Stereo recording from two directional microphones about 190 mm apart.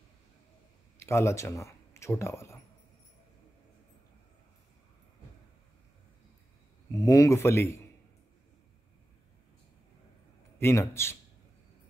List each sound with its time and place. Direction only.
0.9 s speech: 15° left (ahead or behind)
6.9 s speech: 15° left (ahead or behind)
10.6 s speech: 15° left (ahead or behind)